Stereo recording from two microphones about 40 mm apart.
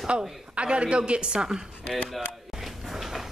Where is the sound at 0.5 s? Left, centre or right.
Right.